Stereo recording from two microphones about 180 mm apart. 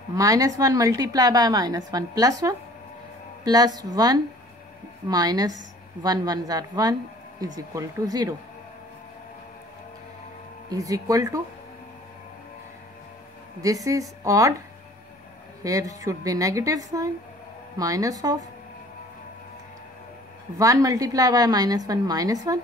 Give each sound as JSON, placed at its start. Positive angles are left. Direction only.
{"t": 0.1, "sound": "a woman's voice", "side_deg": -20}
{"t": 10.7, "sound": "a woman's voice", "side_deg": -20}
{"t": 13.6, "sound": "a woman's voice", "side_deg": -20}
{"t": 15.6, "sound": "a woman's voice", "side_deg": -20}
{"t": 20.5, "sound": "a woman's voice", "side_deg": -20}